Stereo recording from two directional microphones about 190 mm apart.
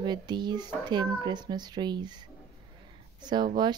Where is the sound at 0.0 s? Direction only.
25° right (ahead or behind).